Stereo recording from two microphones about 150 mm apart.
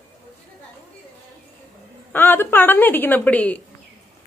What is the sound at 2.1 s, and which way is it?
A woman's voice, 15° left (ahead or behind).